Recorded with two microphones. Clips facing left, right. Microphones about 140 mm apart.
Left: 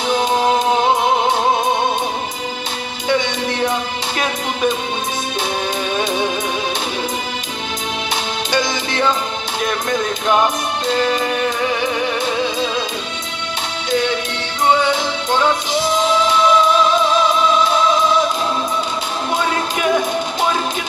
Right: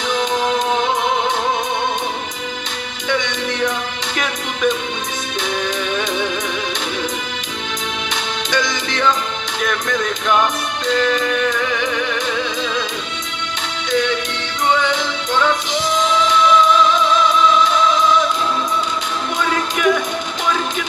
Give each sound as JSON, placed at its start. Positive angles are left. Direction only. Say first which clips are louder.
{"t": 0.1, "sound": "music", "louder": "left 3 dB", "side_deg": 35}
{"t": 3.1, "sound": "music", "louder": "left 3 dB", "side_deg": 30}
{"t": 5.9, "sound": "music", "louder": "left 2 dB", "side_deg": 30}
{"t": 8.5, "sound": "music", "louder": "left 1 dB", "side_deg": 35}
{"t": 13.8, "sound": "music", "louder": "even", "side_deg": 35}
{"t": 19.3, "sound": "music", "louder": "left 1 dB", "side_deg": 30}